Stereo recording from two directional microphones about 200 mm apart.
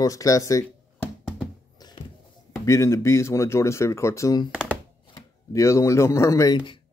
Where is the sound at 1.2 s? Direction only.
Centre (ahead or behind).